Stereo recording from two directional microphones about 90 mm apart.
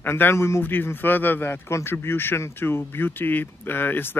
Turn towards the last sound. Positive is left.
turn(degrees=25)  # may be behind; listen again after turning